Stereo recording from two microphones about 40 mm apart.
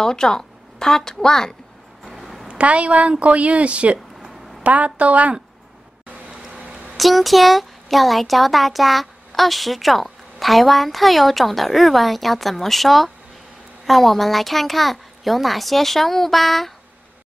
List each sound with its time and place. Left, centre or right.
0.0 s a woman's voice: centre
2.0 s a sound: centre
2.4 s speech: right
7.0 s speech: centre